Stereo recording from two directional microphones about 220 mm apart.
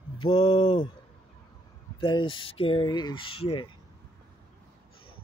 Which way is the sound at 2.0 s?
20° left (ahead or behind).